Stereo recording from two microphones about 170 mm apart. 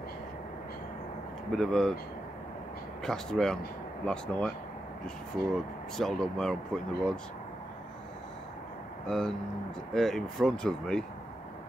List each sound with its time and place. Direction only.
1.5 s speech: centre (ahead or behind)
3.0 s speech: 5° left (ahead or behind)
5.9 s speech: centre (ahead or behind)
9.0 s speech: 5° left (ahead or behind)